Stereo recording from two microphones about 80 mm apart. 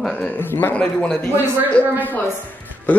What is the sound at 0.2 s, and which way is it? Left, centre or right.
Speech, left.